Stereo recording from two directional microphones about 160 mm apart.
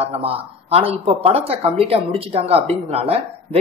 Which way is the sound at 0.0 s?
40° right (ahead or behind).